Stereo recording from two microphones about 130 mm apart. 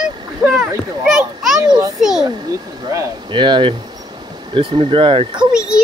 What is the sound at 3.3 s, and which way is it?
Speech, 40° right (ahead or behind).